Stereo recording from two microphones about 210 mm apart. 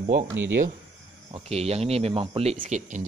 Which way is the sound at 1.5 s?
30° right (ahead or behind).